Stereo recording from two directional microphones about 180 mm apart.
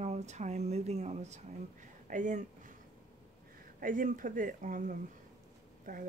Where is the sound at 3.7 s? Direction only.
50° right (ahead or behind).